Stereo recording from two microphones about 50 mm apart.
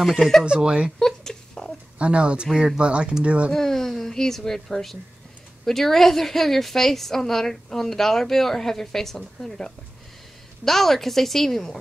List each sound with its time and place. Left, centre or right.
0.4 s speech: centre
0.9 s a sound: centre
2.0 s speech: right
3.5 s a woman's voice: centre